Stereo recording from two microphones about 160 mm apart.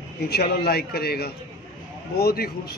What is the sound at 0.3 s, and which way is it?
A man's voice, 80° left.